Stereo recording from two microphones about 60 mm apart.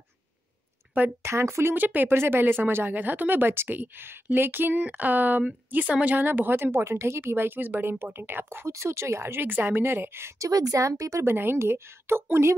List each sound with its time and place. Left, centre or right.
1.2 s a woman's voice: right
6.2 s speech: right
8.6 s speech: right
10.4 s speech: right
11.2 s a woman's voice: right